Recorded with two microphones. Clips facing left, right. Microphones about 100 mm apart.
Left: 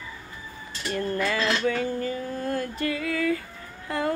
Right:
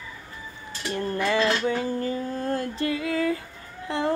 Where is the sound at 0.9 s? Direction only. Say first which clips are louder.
Right 2 dB; 25° right (ahead or behind).